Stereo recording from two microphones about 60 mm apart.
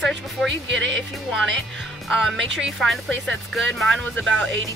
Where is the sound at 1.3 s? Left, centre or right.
Centre.